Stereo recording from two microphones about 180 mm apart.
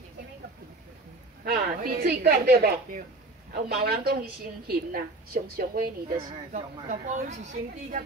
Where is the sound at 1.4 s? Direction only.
60° right (ahead or behind).